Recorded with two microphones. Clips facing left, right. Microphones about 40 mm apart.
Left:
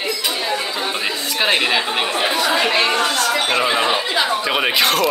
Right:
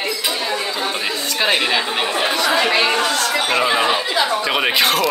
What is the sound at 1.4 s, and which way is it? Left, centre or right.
Speech, centre.